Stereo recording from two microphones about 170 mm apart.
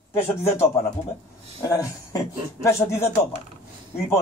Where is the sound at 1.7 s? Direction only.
20° left (ahead or behind).